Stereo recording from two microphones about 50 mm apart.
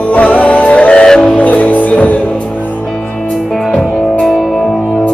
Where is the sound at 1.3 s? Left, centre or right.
Left.